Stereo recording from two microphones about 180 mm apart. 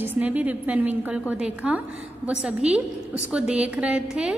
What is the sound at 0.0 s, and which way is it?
A woman's voice, 10° right (ahead or behind).